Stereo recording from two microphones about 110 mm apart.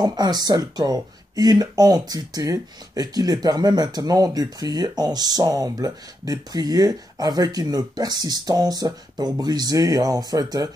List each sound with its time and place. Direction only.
0.0 s speech: 40° right (ahead or behind)